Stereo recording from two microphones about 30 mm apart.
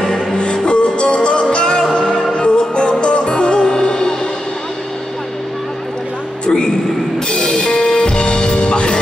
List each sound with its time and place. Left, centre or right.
0.1 s music: left
6.4 s a sound: left
7.2 s music: left